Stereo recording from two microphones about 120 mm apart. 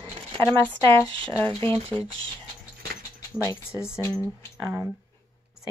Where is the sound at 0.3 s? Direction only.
40° right (ahead or behind).